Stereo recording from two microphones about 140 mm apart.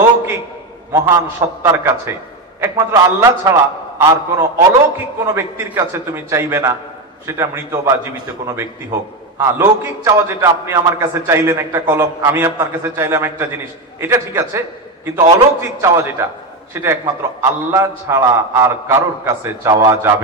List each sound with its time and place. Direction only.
0.9 s a man's voice: 20° right (ahead or behind)